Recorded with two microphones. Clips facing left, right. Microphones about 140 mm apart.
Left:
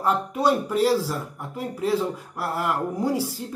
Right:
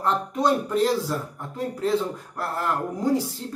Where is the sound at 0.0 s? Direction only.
10° left (ahead or behind).